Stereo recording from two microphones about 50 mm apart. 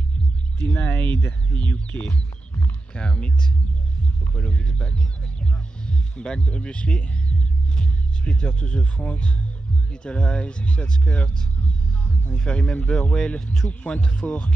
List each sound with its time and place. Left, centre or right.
0.6 s speech: left
2.9 s speech: centre
4.4 s speech: left
12.3 s speech: left
13.7 s speech: left